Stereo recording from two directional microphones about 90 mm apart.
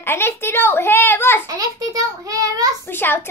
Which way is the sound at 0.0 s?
25° left (ahead or behind).